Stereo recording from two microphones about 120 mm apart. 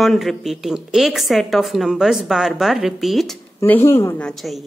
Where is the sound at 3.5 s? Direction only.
20° left (ahead or behind).